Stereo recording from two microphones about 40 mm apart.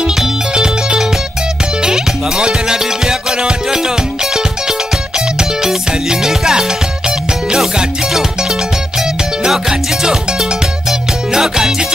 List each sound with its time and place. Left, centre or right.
0.5 s music: right